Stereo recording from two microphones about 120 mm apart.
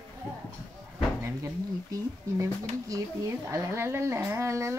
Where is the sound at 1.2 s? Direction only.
25° right (ahead or behind).